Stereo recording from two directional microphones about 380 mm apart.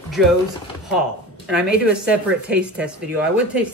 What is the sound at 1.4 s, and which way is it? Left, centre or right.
Speech, centre.